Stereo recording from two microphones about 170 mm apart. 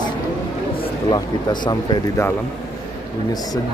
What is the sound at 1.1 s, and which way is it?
Speech, 25° left (ahead or behind).